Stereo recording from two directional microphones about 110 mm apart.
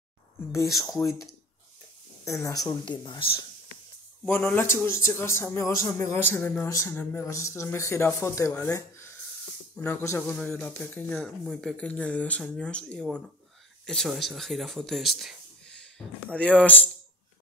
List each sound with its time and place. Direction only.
0.5 s a man's voice: 30° left (ahead or behind)
2.2 s a man's voice: 30° left (ahead or behind)
2.9 s speech: 45° left (ahead or behind)
4.3 s a man's voice: 20° left (ahead or behind)
10.3 s speech: 10° left (ahead or behind)